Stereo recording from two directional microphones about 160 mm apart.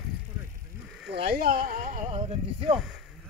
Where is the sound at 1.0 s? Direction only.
80° right; by 2.7 s 40° right (ahead or behind).